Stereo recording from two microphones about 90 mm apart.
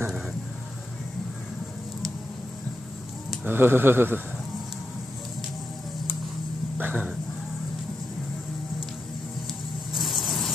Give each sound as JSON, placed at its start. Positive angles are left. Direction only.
{"t": 3.4, "sound": "speech", "side_deg": -25}
{"t": 6.8, "sound": "dog", "side_deg": -20}
{"t": 9.9, "sound": "vehicle", "side_deg": 0}